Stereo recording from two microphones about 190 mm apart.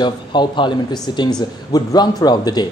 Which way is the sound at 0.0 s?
25° left (ahead or behind).